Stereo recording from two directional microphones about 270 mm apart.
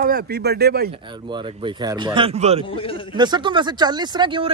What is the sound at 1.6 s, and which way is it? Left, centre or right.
Speech, centre.